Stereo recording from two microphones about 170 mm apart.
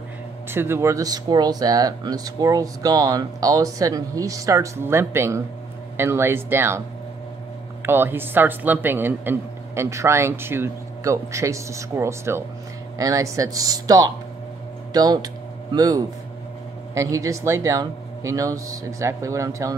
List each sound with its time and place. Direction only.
0.5 s a man's voice: 15° right (ahead or behind)
7.8 s a man's voice: 15° right (ahead or behind)